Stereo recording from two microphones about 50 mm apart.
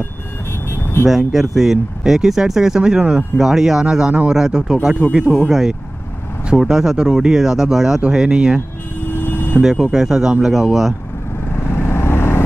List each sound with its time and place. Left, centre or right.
0.7 s vehicle: left
1.0 s speech: centre
9.1 s hum: left
9.6 s speech: centre
11.9 s vehicle: left